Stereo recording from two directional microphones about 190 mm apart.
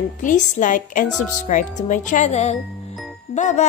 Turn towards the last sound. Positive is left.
turn(degrees=35)  # may be behind; listen again after turning